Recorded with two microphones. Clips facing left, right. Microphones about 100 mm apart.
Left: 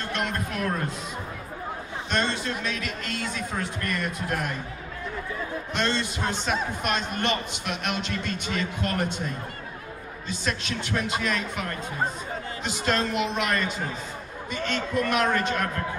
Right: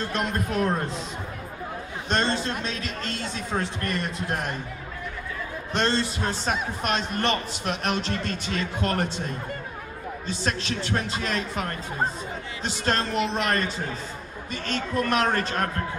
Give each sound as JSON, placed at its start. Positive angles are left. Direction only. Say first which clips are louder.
{"t": 0.1, "sound": "a man's voice", "louder": "even", "side_deg": -35}
{"t": 2.0, "sound": "a man's voice", "louder": "right 2 dB", "side_deg": -35}
{"t": 5.7, "sound": "a man's voice", "louder": "right 4 dB", "side_deg": -35}
{"t": 10.2, "sound": "a man's voice", "louder": "right 1 dB", "side_deg": -35}
{"t": 12.8, "sound": "a man's voice", "louder": "even", "side_deg": -35}